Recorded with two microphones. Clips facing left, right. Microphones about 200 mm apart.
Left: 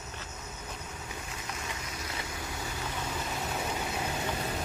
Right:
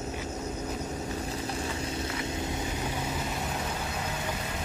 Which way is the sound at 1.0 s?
35° right (ahead or behind).